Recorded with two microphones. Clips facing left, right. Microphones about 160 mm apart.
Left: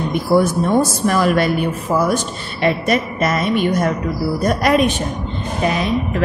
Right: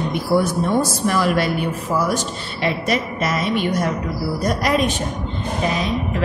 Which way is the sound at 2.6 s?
50° left (ahead or behind).